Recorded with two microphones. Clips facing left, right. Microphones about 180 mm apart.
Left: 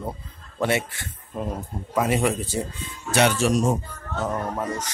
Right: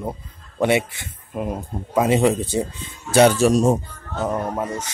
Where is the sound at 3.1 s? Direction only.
35° right (ahead or behind).